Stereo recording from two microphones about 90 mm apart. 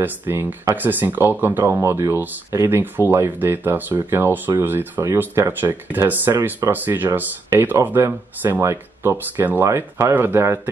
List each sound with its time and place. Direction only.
0.0 s speech: 20° right (ahead or behind)